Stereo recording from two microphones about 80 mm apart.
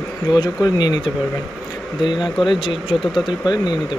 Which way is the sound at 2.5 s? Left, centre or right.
Left.